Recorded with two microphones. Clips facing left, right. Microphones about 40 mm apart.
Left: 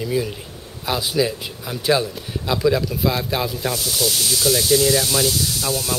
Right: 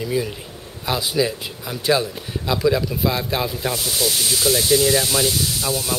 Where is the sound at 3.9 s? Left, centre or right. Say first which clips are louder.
Even; right.